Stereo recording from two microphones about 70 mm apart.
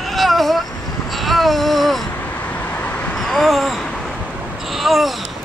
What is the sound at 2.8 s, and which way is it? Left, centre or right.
Vehicle, left.